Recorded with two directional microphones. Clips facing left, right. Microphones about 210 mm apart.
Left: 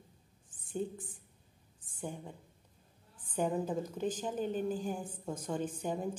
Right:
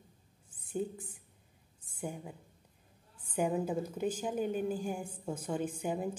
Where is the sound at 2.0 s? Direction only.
10° right (ahead or behind).